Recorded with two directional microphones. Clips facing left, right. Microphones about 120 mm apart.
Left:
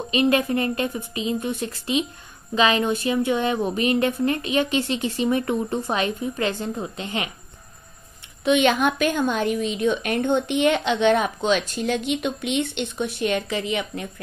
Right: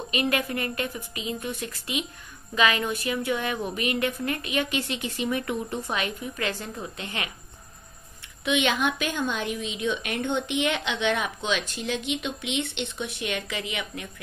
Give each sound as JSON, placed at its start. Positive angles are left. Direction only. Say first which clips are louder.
{"t": 0.1, "sound": "speech", "louder": "left 7 dB", "side_deg": 25}
{"t": 8.5, "sound": "a woman's voice", "louder": "left 6 dB", "side_deg": 40}